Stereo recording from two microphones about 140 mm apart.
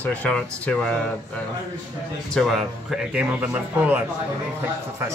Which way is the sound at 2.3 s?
Centre (ahead or behind).